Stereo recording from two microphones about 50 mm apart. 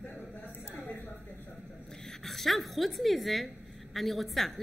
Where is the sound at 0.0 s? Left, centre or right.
Left.